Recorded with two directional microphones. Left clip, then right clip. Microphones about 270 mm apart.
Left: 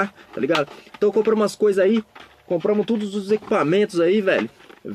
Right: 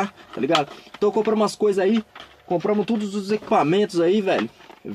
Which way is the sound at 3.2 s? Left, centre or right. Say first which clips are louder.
Right 1 dB; centre.